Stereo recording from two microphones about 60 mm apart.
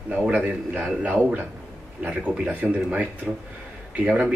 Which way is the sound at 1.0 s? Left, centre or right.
Right.